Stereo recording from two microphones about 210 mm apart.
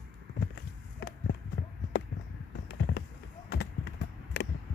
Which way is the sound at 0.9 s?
60° left (ahead or behind).